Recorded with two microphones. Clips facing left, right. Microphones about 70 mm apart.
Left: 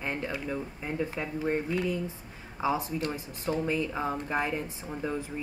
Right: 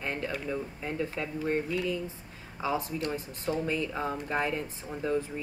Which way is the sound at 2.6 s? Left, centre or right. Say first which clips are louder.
Left 2 dB; centre.